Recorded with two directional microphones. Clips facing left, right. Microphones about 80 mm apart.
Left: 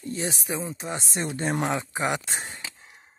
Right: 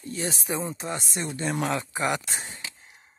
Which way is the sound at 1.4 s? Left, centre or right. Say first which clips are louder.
Left 1 dB; left.